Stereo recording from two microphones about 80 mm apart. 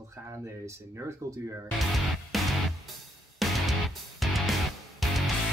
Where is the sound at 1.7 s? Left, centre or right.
Centre.